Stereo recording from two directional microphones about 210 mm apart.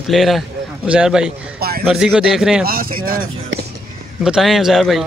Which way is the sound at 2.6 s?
45° right (ahead or behind).